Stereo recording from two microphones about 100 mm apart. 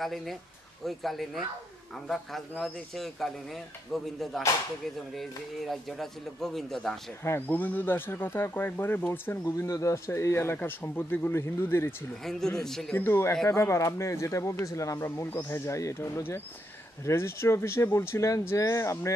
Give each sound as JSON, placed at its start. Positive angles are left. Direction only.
{"t": 0.0, "sound": "speech", "side_deg": 0}
{"t": 7.2, "sound": "speech", "side_deg": 20}
{"t": 12.2, "sound": "speech", "side_deg": 5}
{"t": 12.9, "sound": "speech", "side_deg": 20}